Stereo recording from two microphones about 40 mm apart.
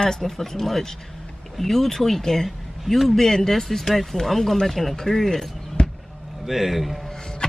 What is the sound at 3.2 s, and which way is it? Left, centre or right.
Speech, centre.